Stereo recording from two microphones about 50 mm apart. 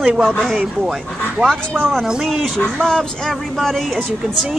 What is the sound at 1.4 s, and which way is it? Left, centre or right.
Speech, centre.